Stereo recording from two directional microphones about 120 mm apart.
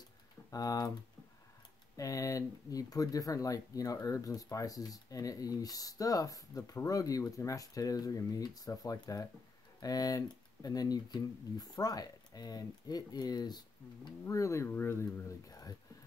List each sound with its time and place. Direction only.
0.5 s speech: 30° left (ahead or behind)
2.0 s speech: 25° left (ahead or behind)